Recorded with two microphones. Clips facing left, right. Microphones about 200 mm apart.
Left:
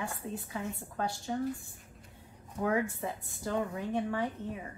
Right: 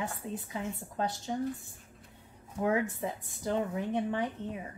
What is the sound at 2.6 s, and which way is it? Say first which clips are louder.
A woman's voice: right 1 dB; 20° right (ahead or behind).